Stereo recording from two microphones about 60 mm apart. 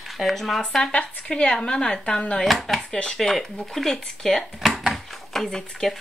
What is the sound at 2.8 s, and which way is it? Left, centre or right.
Speech, centre.